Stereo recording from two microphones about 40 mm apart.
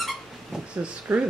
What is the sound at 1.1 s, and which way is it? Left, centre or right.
Speech, right.